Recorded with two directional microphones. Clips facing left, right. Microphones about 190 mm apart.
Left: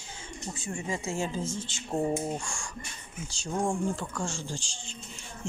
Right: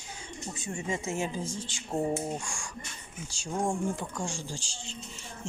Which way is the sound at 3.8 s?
15° right (ahead or behind).